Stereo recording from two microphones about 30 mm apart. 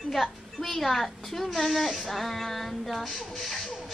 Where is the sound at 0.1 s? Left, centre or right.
Centre.